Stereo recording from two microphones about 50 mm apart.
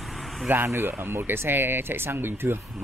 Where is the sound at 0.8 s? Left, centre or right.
Right.